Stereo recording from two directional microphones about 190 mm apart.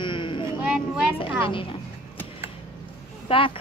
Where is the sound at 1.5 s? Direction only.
25° left (ahead or behind).